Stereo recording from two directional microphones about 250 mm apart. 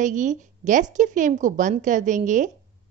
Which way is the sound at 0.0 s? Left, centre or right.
Right.